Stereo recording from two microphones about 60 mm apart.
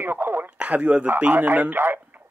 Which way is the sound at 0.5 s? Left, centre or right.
Right.